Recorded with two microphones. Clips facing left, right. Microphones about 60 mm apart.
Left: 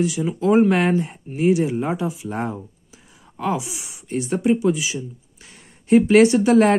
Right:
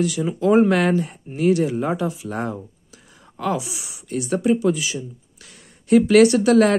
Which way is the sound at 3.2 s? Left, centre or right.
Centre.